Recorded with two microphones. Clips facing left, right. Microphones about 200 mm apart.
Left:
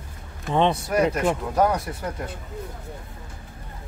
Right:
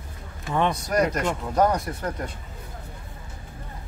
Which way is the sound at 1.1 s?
10° left (ahead or behind).